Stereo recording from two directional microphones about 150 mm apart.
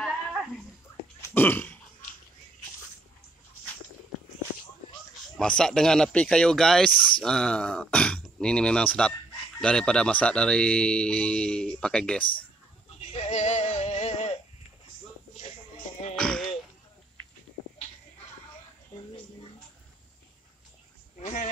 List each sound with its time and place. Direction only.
1.3 s burping: 15° left (ahead or behind)
5.4 s speech: 5° left (ahead or behind)
13.0 s goat: 45° left (ahead or behind)
16.2 s a sound: 5° left (ahead or behind)